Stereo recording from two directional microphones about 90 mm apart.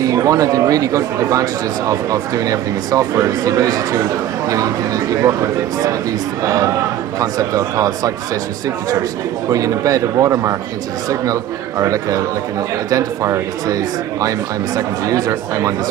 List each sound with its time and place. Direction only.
0.0 s speech: 40° right (ahead or behind)
6.4 s speech: 40° right (ahead or behind)
9.5 s speech: 40° right (ahead or behind)
11.8 s speech: 40° right (ahead or behind)